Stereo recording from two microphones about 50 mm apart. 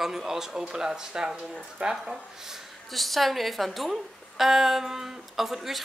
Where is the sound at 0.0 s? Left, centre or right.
Centre.